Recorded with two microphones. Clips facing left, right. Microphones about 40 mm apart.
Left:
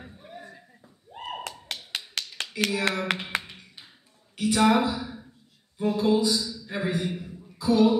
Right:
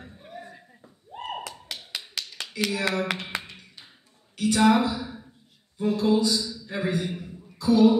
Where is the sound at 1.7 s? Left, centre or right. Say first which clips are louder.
Left 2 dB; left.